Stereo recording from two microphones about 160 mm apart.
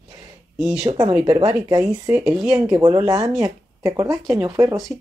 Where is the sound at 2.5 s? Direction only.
25° right (ahead or behind).